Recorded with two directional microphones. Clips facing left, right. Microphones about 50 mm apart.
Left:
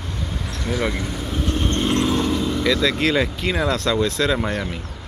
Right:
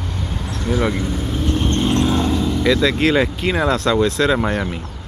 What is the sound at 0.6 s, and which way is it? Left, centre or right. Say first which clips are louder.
Speech: right 4 dB; centre.